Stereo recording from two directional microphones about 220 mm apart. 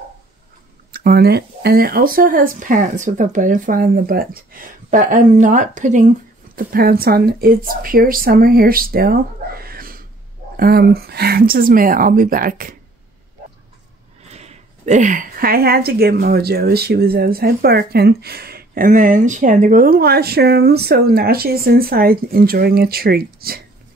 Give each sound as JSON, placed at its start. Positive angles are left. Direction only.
{"t": 0.9, "sound": "speech", "side_deg": -45}
{"t": 14.3, "sound": "speech", "side_deg": -30}